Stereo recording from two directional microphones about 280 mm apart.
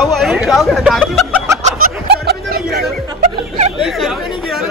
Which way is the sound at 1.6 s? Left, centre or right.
Right.